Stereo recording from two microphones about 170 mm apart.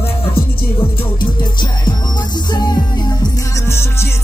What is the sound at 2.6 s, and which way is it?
Music, 25° left (ahead or behind).